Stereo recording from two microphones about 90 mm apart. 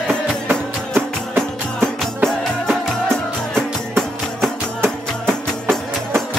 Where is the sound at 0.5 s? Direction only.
25° right (ahead or behind).